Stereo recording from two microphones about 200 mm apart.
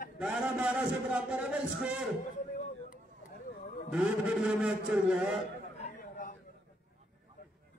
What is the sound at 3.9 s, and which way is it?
A man's voice, 5° right (ahead or behind).